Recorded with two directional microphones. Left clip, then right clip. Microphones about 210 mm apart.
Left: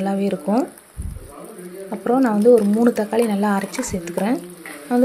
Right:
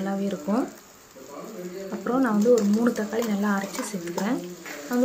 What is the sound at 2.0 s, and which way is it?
Speech, 20° left (ahead or behind).